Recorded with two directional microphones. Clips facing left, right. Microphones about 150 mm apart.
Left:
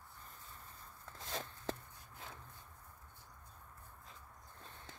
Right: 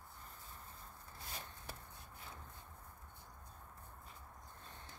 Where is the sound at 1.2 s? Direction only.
90° left.